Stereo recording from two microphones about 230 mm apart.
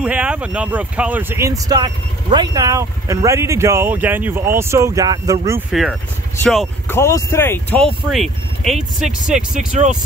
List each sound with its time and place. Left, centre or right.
0.0 s speech: centre
5.7 s speech: centre
9.7 s speech: right